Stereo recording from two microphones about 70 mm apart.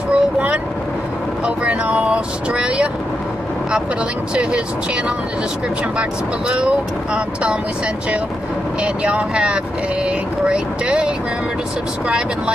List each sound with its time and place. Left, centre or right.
0.1 s vehicle: centre
5.9 s speech: centre
8.8 s speech: centre